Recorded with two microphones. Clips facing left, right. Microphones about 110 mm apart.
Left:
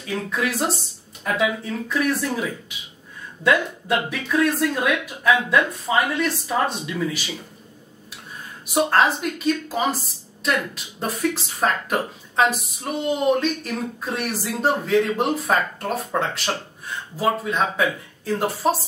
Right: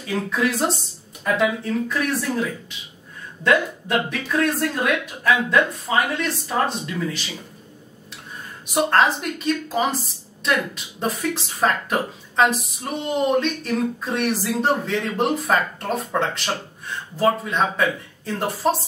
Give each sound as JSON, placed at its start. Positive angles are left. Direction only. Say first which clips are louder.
{"t": 0.3, "sound": "a woman's voice", "louder": "right 2 dB", "side_deg": 0}
{"t": 3.4, "sound": "a woman's voice", "louder": "even", "side_deg": 5}
{"t": 8.6, "sound": "a woman's voice", "louder": "even", "side_deg": 0}